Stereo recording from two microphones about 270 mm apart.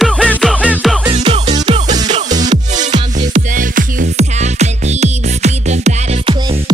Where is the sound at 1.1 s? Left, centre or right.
Right.